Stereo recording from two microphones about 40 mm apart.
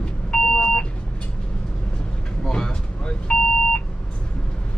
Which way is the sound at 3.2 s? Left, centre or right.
Left.